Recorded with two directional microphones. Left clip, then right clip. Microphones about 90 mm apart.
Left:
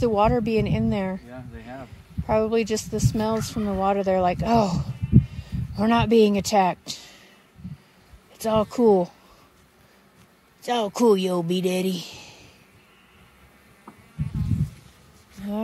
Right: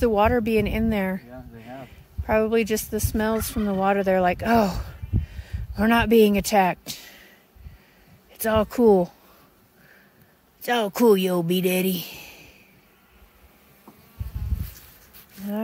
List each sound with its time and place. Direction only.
0.0 s speech: 40° right (ahead or behind)
2.2 s speech: 35° right (ahead or behind)
8.4 s speech: 35° right (ahead or behind)
10.6 s speech: 40° right (ahead or behind)